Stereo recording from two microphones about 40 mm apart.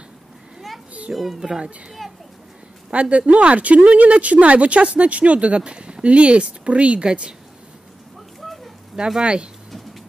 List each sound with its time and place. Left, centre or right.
1.1 s speech: centre
2.0 s a sound: centre
2.9 s speech: right
9.2 s speech: right